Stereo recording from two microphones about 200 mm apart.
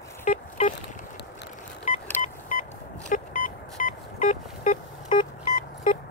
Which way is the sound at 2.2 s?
40° left (ahead or behind).